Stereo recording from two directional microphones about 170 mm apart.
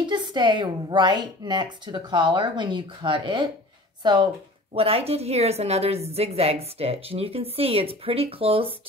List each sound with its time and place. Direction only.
0.0 s speech: 25° right (ahead or behind)
4.7 s a woman's voice: 35° right (ahead or behind)